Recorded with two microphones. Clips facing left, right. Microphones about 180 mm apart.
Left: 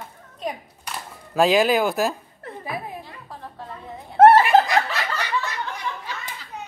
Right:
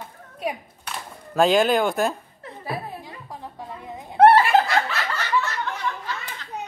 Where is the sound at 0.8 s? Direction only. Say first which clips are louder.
Even; centre (ahead or behind).